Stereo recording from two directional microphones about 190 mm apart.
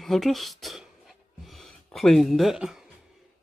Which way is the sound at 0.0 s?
Centre (ahead or behind).